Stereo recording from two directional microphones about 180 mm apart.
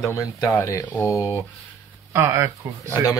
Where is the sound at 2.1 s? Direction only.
10° right (ahead or behind).